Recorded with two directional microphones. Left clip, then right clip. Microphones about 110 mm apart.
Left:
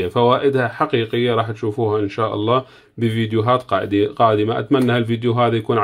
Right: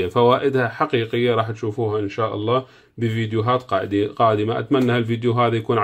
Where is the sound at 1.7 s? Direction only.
30° left (ahead or behind).